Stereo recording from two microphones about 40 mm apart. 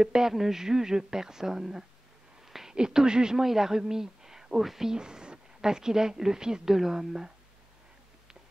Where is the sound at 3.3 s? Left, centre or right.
Centre.